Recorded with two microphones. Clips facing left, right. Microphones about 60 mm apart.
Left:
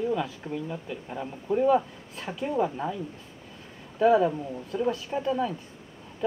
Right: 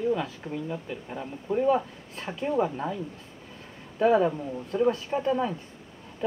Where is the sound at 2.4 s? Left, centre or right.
Centre.